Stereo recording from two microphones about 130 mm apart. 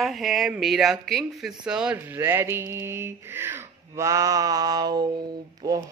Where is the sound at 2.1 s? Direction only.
20° right (ahead or behind).